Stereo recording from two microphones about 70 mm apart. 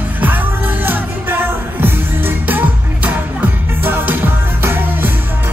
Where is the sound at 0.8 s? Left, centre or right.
Right.